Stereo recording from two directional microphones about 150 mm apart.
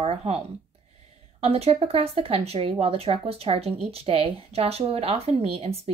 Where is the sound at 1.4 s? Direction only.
40° right (ahead or behind).